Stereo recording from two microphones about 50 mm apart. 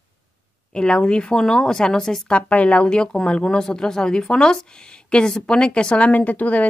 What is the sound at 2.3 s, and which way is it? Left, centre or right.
Speech, left.